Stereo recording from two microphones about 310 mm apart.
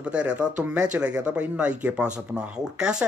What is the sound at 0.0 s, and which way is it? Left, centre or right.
Speech, centre.